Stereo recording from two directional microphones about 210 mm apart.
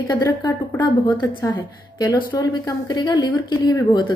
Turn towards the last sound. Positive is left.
turn(degrees=20)  # may be behind; listen again after turning